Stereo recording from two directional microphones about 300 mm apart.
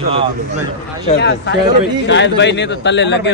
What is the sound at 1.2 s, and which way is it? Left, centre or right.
Speech, left.